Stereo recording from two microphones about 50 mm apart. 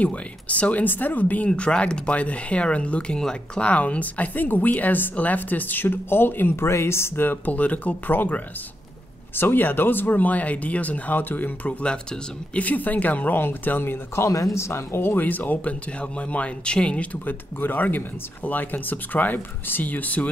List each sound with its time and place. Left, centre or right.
0.0 s speech: left
1.5 s speech: centre
3.6 s speech: left
6.5 s speech: left
7.2 s speech: left
9.3 s speech: left
11.8 s speech: left
12.6 s speech: left
13.4 s speech: left
14.2 s speech: left
17.2 s speech: left